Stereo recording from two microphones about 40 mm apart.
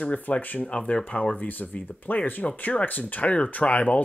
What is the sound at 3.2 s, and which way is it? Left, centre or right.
Speech, left.